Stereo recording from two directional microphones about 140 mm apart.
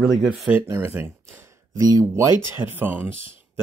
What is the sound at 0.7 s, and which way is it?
Speech, 15° right (ahead or behind).